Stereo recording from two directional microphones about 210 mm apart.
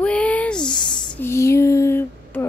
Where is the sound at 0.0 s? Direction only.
5° left (ahead or behind).